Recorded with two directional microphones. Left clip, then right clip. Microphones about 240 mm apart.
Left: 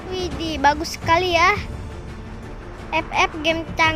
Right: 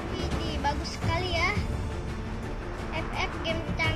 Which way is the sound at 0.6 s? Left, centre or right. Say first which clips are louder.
Left 15 dB; left.